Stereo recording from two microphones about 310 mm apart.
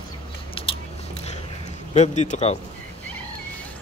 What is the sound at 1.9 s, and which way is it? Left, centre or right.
Speech, left.